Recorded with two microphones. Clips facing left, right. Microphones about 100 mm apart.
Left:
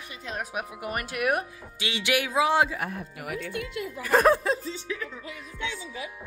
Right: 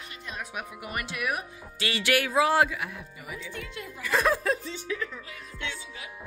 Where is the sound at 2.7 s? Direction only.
45° left (ahead or behind).